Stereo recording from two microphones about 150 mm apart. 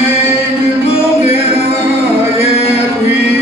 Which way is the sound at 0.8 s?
40° left (ahead or behind).